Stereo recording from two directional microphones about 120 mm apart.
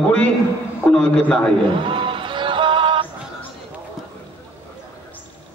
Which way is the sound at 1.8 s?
45° right (ahead or behind).